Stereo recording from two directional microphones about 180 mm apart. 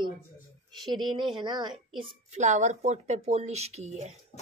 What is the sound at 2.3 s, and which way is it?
Speech, 40° right (ahead or behind).